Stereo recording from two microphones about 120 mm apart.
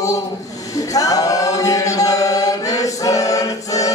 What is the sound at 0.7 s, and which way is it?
Chant, 30° left (ahead or behind).